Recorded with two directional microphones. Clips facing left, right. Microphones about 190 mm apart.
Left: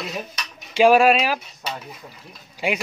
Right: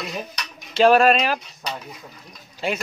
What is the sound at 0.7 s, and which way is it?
Cutlery, 10° left (ahead or behind).